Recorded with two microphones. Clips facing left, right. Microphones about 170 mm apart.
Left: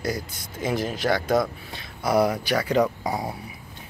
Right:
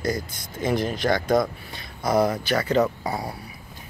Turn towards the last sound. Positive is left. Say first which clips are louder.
# left 1 dB
turn(degrees=20)  # may be behind; listen again after turning